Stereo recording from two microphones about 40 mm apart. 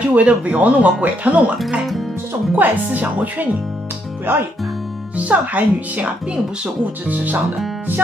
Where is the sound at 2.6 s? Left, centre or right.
Right.